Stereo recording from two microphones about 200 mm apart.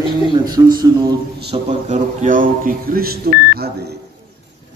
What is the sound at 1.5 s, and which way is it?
Speech, 40° right (ahead or behind).